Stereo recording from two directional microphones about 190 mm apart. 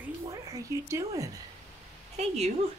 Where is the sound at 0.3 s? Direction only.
15° right (ahead or behind).